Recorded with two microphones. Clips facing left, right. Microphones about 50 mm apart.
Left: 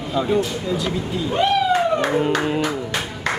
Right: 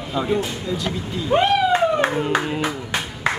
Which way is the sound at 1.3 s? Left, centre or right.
Right.